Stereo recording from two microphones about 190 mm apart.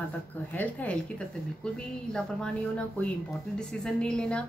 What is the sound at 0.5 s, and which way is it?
Speech, 10° left (ahead or behind).